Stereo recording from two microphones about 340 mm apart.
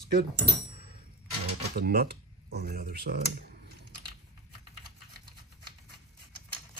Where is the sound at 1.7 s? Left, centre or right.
Right.